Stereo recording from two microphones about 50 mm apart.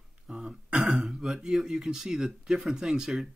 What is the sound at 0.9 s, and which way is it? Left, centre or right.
Speech, centre.